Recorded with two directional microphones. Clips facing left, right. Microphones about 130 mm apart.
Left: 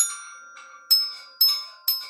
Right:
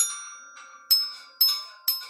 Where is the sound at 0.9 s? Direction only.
5° right (ahead or behind).